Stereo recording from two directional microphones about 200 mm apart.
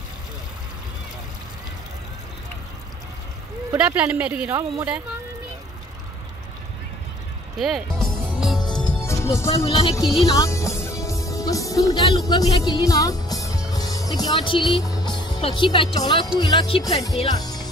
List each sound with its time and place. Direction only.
3.7 s a woman's voice: 5° right (ahead or behind)
7.5 s music: centre (ahead or behind)
9.7 s speech: 25° left (ahead or behind)
17.3 s music: 20° left (ahead or behind)